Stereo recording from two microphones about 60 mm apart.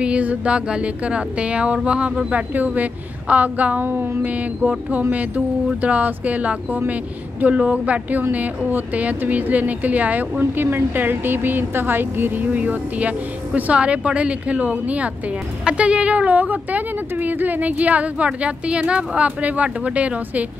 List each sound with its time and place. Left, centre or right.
0.0 s a woman's voice: right
10.4 s a woman's voice: right